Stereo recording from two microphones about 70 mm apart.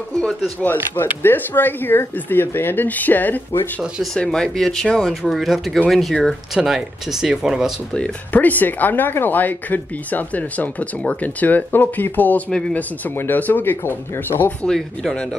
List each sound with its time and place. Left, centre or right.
0.1 s a sound: centre
1.2 s speech: left
4.2 s speech: centre
8.3 s speech: left
14.6 s speech: centre